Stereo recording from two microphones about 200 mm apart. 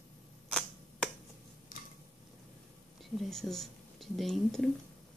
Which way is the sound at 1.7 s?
45° left (ahead or behind).